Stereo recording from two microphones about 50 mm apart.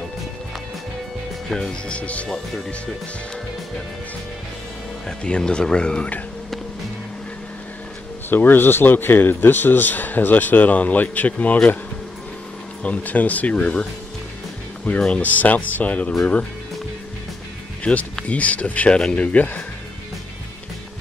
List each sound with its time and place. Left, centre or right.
1.5 s speech: centre
1.9 s speech: left
5.0 s speech: centre
8.3 s a man's voice: left
12.8 s speech: left
14.9 s speech: left
17.9 s speech: centre
18.3 s speech: left
18.9 s speech: centre
19.2 s a man's voice: left